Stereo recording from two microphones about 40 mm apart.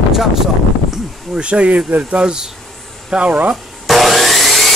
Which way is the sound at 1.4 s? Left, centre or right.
Right.